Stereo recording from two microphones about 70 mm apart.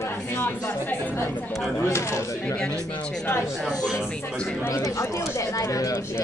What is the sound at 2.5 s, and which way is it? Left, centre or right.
Speech, centre.